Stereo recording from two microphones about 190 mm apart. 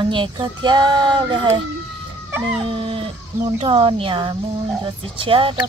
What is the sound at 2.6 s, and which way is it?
Speech, 25° right (ahead or behind).